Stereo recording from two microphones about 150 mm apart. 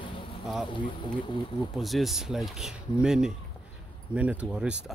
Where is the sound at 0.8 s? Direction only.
35° left (ahead or behind).